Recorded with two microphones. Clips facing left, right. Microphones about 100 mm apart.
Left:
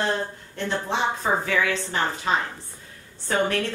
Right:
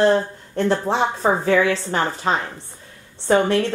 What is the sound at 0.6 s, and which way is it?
A woman's voice, 40° right (ahead or behind).